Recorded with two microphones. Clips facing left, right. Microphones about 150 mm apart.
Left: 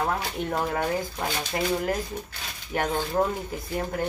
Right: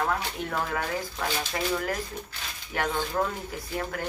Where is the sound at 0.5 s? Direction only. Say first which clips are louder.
Left 4 dB; 20° left (ahead or behind).